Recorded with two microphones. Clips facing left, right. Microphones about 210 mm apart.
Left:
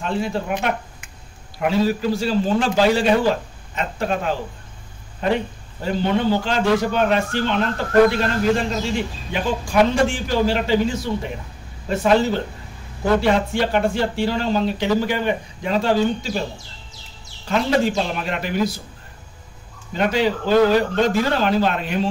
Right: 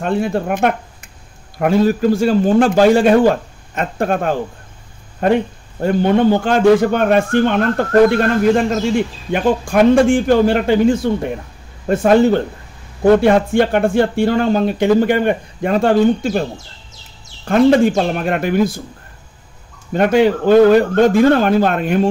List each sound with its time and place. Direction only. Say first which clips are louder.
0.0 s a man's voice: right 6 dB; 55° right (ahead or behind)
17.5 s a man's voice: right 8 dB; 50° right (ahead or behind)
19.9 s a man's voice: right 7 dB; 50° right (ahead or behind)